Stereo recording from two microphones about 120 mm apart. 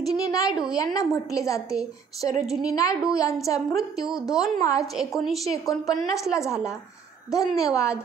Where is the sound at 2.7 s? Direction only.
30° left (ahead or behind).